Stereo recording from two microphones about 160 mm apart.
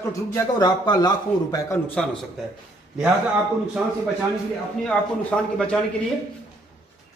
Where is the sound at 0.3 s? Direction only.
20° left (ahead or behind).